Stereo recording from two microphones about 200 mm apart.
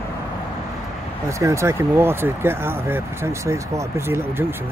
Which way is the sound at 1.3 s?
15° right (ahead or behind).